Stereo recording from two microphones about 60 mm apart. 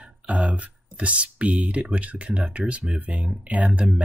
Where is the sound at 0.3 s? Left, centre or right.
Right.